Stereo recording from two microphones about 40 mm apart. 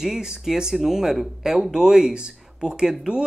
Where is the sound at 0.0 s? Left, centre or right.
Centre.